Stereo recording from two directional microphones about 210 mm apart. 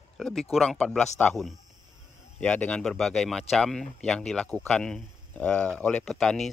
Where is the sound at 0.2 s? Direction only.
Centre (ahead or behind).